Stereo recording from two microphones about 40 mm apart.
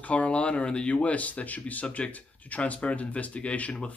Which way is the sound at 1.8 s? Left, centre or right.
Left.